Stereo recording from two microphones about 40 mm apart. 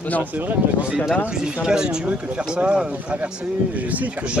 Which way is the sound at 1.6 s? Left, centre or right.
Centre.